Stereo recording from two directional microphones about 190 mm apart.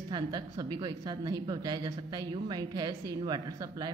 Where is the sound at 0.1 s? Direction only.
20° right (ahead or behind).